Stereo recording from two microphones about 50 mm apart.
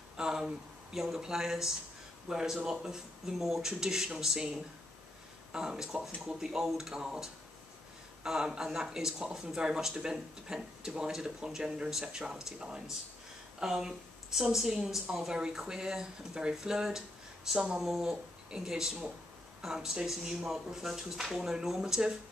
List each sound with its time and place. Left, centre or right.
0.2 s a sound: centre
0.9 s speech: centre
5.5 s speech: centre
12.5 s speech: right
13.6 s speech: centre
17.6 s speech: right
17.8 s speech: centre